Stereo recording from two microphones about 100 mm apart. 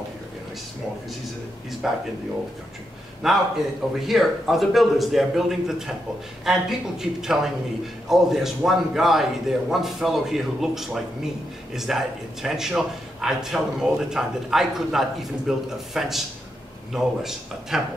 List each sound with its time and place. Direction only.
1.8 s a man's voice: 5° right (ahead or behind)
3.2 s a man's voice: centre (ahead or behind)